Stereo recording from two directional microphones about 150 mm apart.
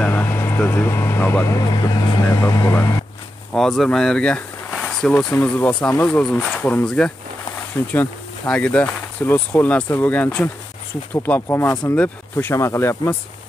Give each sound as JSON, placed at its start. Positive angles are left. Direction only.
{"t": 0.0, "sound": "speech", "side_deg": 15}
{"t": 3.5, "sound": "speech", "side_deg": 0}